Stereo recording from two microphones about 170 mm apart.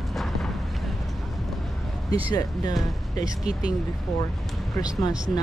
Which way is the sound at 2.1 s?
20° left (ahead or behind).